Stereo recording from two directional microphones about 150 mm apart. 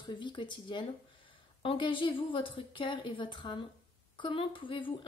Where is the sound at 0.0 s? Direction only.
30° left (ahead or behind).